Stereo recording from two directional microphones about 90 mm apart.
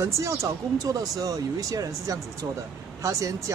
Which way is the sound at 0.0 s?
35° right (ahead or behind).